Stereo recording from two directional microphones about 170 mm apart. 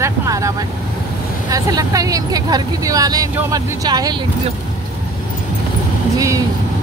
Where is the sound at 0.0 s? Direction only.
20° right (ahead or behind).